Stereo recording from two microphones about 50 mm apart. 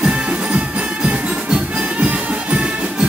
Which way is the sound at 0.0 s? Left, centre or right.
Right.